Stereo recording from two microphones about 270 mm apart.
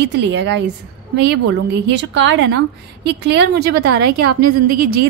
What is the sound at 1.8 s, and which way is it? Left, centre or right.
A woman's voice, right.